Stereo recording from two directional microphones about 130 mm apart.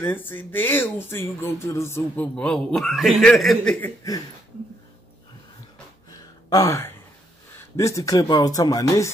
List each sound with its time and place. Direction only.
0.0 s speech: 15° left (ahead or behind)
2.3 s a man's voice: 5° left (ahead or behind)
3.8 s speech: 25° left (ahead or behind)
6.0 s a sound: 30° left (ahead or behind)
7.5 s speech: 20° left (ahead or behind)